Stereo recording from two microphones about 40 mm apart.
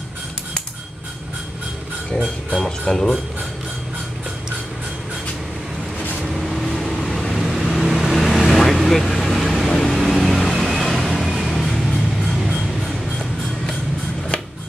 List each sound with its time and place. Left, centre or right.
2.1 s speech: centre
2.9 s speech: centre
6.2 s vehicle: centre
11.1 s music: centre
11.6 s music: centre